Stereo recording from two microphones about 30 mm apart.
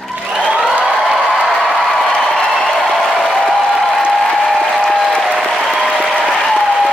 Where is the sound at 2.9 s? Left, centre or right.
Centre.